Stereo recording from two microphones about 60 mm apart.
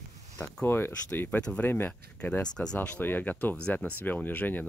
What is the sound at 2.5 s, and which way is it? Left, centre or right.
Speech, centre.